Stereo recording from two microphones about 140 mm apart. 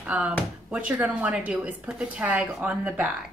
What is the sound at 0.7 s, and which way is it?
A woman's voice, 10° right (ahead or behind).